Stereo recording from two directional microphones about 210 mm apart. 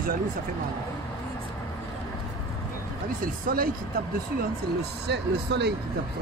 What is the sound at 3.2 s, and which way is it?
Speech, 45° right (ahead or behind).